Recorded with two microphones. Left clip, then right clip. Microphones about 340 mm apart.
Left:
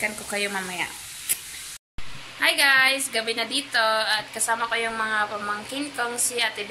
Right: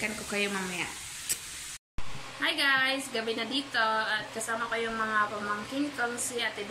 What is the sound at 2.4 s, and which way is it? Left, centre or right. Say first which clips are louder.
A woman's voice: left 8 dB; centre.